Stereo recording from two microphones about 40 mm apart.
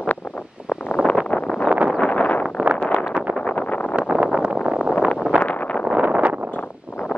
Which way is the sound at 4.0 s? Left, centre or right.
Right.